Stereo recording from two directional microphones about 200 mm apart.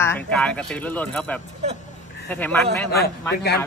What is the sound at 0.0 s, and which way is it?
Speech, 10° left (ahead or behind).